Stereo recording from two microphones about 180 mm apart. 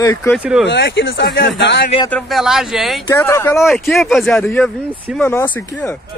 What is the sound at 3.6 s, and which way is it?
Speech, centre (ahead or behind).